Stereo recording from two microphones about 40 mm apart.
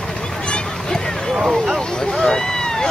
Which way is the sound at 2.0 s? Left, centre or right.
Centre.